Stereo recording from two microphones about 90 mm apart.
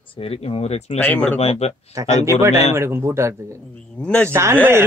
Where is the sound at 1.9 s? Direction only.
35° right (ahead or behind).